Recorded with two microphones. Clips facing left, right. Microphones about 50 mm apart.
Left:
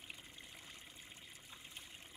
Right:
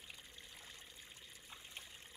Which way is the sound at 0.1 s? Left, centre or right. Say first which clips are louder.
Left 3 dB; centre.